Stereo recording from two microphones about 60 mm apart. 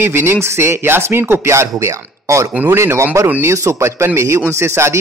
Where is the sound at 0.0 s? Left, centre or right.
Right.